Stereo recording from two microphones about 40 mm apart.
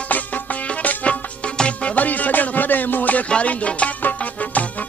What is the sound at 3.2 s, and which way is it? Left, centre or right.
Music, left.